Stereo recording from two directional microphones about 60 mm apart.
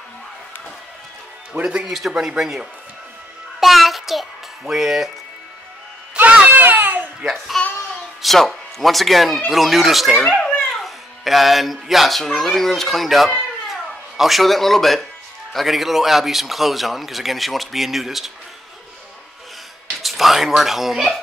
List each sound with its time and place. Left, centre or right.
1.5 s speech: centre
1.9 s speech: centre
3.5 s child singing: centre
6.5 s a sound: right
7.5 s a man's voice: centre
10.2 s a child's voice: centre
10.8 s a man's voice: centre
20.0 s a man's voice: centre